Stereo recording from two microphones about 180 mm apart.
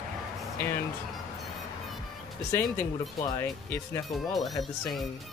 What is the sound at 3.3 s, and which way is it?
Speech, 15° left (ahead or behind).